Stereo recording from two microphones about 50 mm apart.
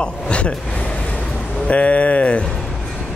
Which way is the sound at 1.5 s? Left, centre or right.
Left.